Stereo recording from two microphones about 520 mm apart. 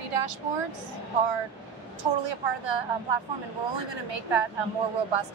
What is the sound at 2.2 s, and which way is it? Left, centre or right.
A woman's voice, right.